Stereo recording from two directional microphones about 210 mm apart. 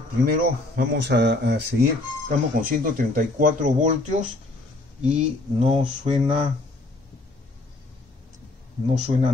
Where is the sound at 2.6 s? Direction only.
40° right (ahead or behind).